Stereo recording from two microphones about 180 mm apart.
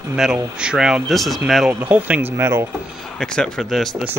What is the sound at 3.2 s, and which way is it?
Speech, 5° left (ahead or behind).